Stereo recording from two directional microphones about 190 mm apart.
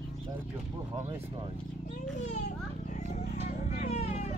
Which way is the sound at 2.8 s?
40° left (ahead or behind).